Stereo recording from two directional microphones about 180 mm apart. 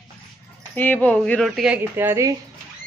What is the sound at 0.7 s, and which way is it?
Speech, 10° left (ahead or behind).